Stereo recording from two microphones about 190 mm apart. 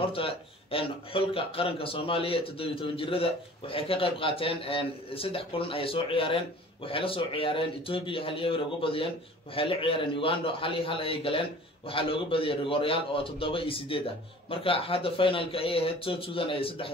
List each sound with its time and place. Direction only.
0.1 s a man's voice: 30° left (ahead or behind)